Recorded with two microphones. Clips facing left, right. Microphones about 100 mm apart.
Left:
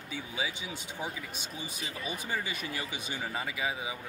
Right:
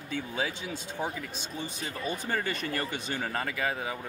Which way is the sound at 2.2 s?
60° right (ahead or behind).